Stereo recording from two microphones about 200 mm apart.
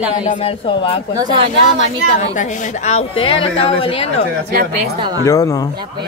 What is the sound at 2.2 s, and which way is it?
A woman's voice, 35° left (ahead or behind).